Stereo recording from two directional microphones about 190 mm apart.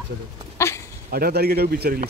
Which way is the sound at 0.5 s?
15° left (ahead or behind).